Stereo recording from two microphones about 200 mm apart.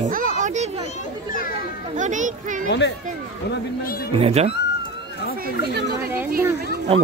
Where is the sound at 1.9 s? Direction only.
40° right (ahead or behind).